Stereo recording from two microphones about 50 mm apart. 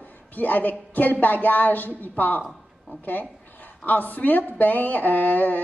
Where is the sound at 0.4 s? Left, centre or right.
Left.